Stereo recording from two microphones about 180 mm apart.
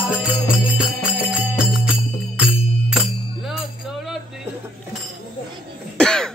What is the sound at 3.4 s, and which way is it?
Music, centre (ahead or behind).